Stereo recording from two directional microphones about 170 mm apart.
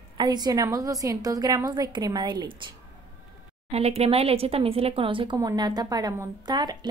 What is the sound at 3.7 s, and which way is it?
A woman's voice, 35° right (ahead or behind).